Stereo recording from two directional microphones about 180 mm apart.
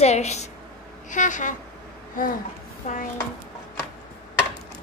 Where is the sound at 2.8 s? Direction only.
45° left (ahead or behind).